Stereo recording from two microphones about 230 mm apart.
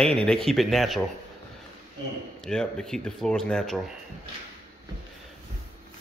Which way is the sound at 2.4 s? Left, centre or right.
Centre.